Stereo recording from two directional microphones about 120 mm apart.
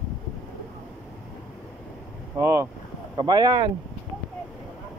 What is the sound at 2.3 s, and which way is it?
Speech, 20° right (ahead or behind).